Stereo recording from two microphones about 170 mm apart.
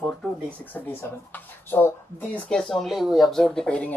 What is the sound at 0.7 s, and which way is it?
Speech, 10° left (ahead or behind).